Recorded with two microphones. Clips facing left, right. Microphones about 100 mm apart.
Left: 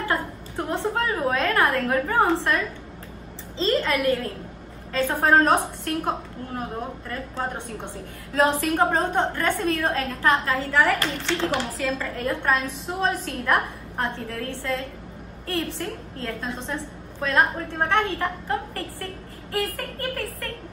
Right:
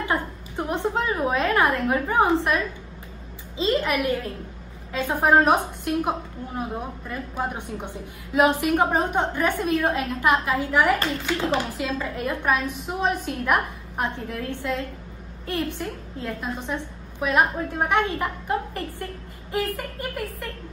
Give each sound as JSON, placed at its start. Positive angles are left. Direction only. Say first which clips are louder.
{"t": 0.1, "sound": "a woman's voice", "louder": "even", "side_deg": -20}
{"t": 3.5, "sound": "a woman's voice", "louder": "even", "side_deg": -15}
{"t": 11.5, "sound": "a woman's voice", "louder": "right 1 dB", "side_deg": -20}
{"t": 19.5, "sound": "a woman's voice", "louder": "right 1 dB", "side_deg": -15}